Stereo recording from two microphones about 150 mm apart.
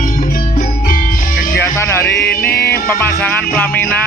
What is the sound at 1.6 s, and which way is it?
Music, 15° left (ahead or behind).